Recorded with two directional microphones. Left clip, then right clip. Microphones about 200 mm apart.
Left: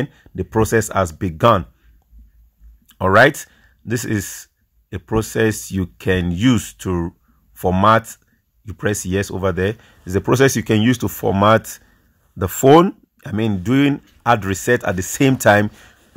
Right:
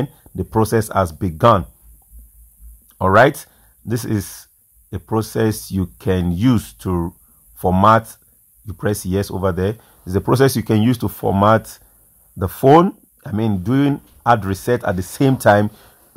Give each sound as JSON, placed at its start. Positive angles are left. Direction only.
{"t": 0.1, "sound": "speech", "side_deg": 35}
{"t": 2.9, "sound": "speech", "side_deg": 35}